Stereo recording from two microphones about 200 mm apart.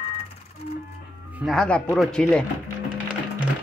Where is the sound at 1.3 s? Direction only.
Centre (ahead or behind).